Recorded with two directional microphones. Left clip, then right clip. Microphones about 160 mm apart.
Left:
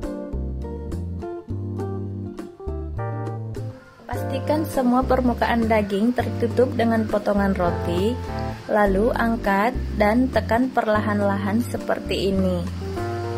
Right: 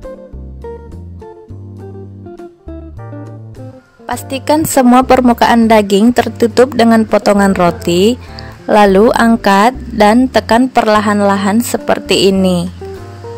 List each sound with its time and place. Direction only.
4.1 s a woman's voice: 55° right (ahead or behind)